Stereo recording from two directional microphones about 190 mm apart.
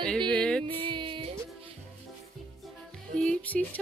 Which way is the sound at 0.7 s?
25° right (ahead or behind).